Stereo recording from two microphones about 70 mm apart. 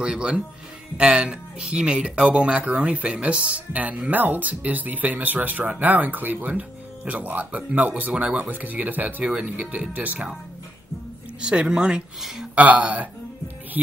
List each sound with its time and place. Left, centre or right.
0.0 s speech: centre
11.4 s speech: centre
12.5 s speech: right